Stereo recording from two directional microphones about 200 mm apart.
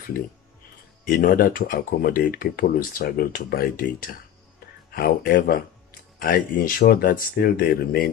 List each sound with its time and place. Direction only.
1.0 s speech: 45° left (ahead or behind)